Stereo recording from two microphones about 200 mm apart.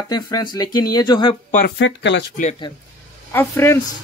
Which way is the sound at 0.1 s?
20° left (ahead or behind).